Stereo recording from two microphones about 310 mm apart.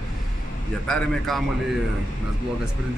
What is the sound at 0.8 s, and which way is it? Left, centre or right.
Speech, centre.